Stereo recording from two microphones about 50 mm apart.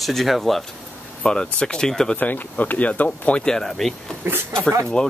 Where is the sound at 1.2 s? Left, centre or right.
Centre.